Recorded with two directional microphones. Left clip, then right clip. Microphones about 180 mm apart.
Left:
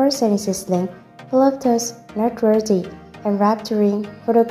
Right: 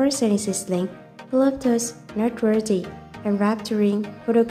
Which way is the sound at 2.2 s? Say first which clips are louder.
Left 4 dB; 10° right (ahead or behind).